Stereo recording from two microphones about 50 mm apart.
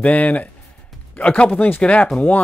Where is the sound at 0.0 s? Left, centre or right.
Left.